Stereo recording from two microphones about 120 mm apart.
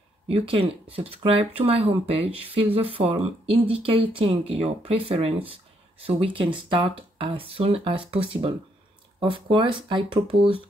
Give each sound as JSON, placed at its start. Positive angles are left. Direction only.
{"t": 0.3, "sound": "speech", "side_deg": -50}